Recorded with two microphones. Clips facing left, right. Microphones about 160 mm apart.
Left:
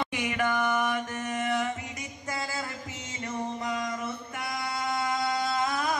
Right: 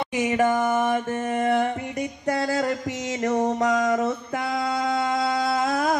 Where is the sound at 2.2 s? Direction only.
65° right (ahead or behind).